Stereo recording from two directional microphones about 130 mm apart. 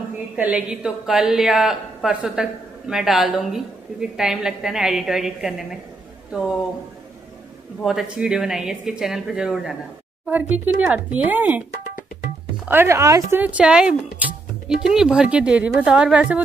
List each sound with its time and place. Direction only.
0.4 s a woman's voice: 10° right (ahead or behind)
7.8 s a woman's voice: 5° right (ahead or behind)
12.6 s speech: 20° right (ahead or behind)
13.4 s speech: 10° right (ahead or behind)